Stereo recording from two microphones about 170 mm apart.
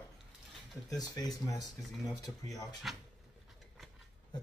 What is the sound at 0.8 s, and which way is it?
Speech, 20° left (ahead or behind).